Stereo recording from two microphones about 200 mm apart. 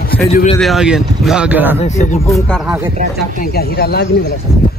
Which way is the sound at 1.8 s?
35° left (ahead or behind).